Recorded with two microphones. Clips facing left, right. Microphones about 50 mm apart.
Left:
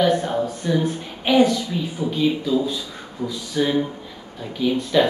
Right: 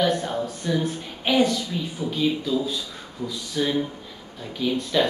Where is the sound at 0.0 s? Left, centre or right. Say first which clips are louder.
Left 4 dB; centre.